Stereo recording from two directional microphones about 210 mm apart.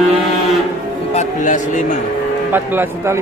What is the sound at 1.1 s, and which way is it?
Speech, 35° left (ahead or behind).